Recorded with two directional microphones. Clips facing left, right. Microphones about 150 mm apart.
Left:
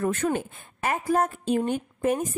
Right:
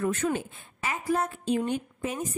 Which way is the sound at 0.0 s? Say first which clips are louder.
Left 2 dB; 50° left (ahead or behind).